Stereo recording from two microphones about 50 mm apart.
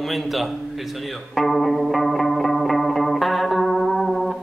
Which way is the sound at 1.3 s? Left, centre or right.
Centre.